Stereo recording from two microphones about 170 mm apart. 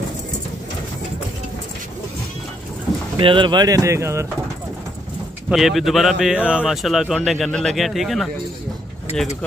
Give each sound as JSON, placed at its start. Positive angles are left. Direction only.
{"t": 3.2, "sound": "speech", "side_deg": -30}
{"t": 5.5, "sound": "speech", "side_deg": 0}